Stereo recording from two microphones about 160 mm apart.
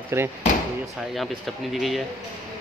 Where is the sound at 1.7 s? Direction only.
Centre (ahead or behind).